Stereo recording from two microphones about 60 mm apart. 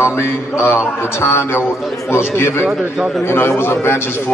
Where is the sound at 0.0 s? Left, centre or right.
Left.